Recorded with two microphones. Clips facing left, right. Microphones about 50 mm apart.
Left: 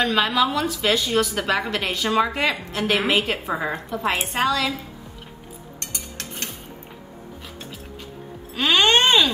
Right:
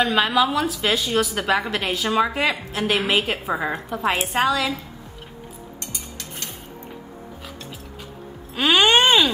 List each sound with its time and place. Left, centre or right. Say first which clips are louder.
0.0 s a woman's voice: right 1 dB; centre
5.8 s music: left 3 dB; left
8.5 s speech: right 1 dB; centre